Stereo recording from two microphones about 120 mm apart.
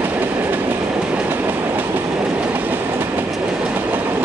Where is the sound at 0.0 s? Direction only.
15° right (ahead or behind).